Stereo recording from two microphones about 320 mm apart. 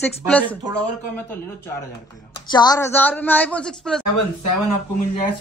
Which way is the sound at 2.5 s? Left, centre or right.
Centre.